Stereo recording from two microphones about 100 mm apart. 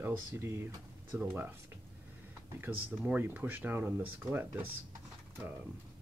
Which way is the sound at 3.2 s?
20° right (ahead or behind).